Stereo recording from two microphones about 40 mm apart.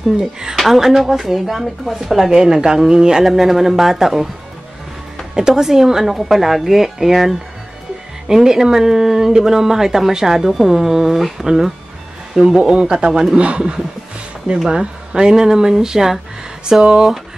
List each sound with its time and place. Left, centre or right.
0.2 s speech: centre
3.3 s speech: centre
5.5 s speech: centre
12.5 s a man's voice: right
13.1 s speech: centre
13.6 s a man's voice: centre